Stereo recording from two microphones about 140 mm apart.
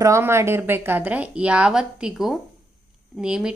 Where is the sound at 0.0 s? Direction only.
20° right (ahead or behind).